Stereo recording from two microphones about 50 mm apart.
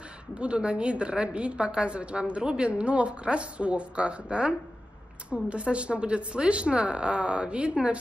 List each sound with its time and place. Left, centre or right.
0.3 s a woman's voice: right